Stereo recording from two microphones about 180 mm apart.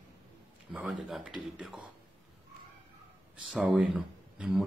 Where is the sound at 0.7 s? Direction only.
5° right (ahead or behind).